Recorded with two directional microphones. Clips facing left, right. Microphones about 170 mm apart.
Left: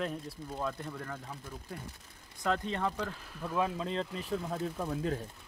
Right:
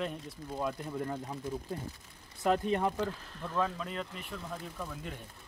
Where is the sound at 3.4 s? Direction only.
10° left (ahead or behind).